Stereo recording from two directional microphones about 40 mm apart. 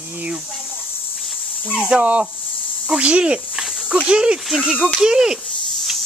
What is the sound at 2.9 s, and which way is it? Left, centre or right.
Snake, right.